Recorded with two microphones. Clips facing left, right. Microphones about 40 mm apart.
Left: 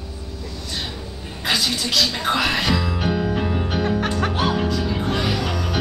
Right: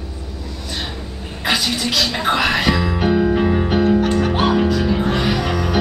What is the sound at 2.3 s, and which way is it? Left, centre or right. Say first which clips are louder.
Music: right 5 dB; centre.